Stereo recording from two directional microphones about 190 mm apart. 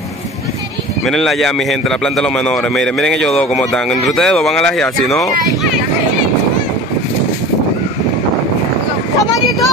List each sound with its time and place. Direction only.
1.0 s a man's voice: centre (ahead or behind)